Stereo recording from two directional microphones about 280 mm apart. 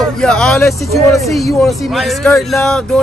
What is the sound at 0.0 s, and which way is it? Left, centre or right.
Speech, centre.